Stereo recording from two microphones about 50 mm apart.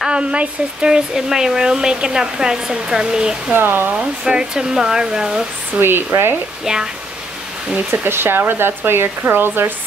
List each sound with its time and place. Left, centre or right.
0.1 s speech: right
3.5 s speech: right
3.9 s speech: centre
5.8 s speech: right
6.6 s speech: centre
7.7 s speech: right
8.1 s speech: right